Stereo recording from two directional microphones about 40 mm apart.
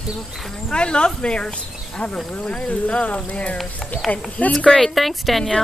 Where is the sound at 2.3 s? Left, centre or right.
Left.